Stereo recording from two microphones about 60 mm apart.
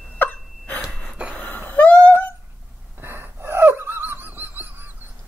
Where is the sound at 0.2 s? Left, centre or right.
Left.